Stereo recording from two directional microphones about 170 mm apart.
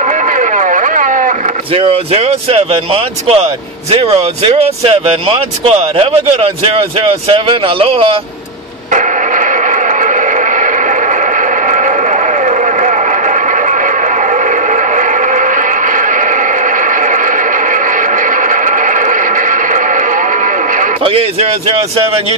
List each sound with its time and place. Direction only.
0.0 s a sound: 45° right (ahead or behind)
1.7 s speech: 35° right (ahead or behind)
8.9 s radio: 50° right (ahead or behind)
21.0 s speech: 35° right (ahead or behind)